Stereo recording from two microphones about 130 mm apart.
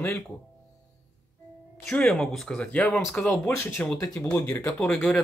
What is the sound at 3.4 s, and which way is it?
Speech, 20° left (ahead or behind).